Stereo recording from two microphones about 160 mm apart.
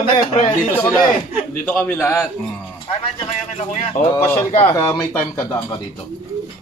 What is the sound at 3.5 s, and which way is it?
Speech, 40° left (ahead or behind).